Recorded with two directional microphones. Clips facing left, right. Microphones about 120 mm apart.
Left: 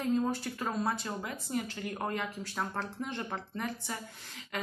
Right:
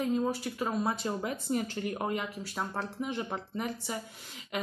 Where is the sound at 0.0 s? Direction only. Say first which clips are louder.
Right 1 dB; 10° right (ahead or behind).